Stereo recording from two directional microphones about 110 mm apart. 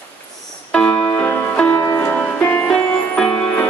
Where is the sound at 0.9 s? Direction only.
35° left (ahead or behind).